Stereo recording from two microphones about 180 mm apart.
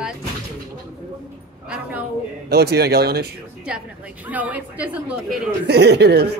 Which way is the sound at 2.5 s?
65° right (ahead or behind).